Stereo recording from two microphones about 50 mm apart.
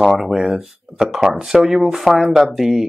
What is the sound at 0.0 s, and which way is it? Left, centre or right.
Speech, centre.